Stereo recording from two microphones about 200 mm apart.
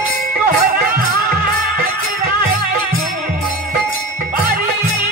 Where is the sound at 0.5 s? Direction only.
45° right (ahead or behind).